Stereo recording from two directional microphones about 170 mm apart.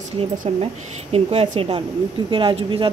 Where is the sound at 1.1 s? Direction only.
35° right (ahead or behind).